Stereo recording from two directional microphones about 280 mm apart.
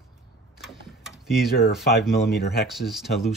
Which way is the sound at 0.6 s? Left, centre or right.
Centre.